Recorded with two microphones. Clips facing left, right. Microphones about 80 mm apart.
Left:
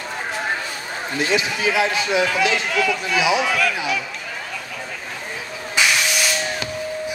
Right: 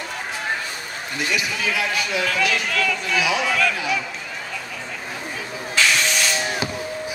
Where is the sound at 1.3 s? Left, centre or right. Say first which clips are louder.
Left 4 dB; left.